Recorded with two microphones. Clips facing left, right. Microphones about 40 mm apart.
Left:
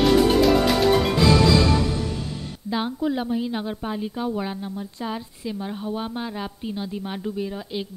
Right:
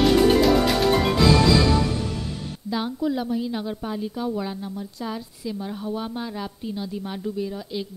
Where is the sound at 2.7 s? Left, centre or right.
Left.